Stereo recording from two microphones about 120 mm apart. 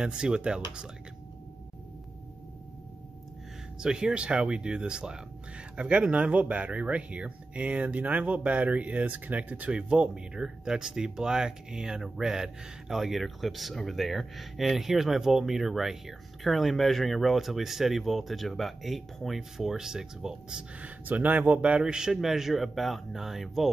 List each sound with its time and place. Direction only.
0.0 s speech: 5° right (ahead or behind)
3.8 s speech: 5° right (ahead or behind)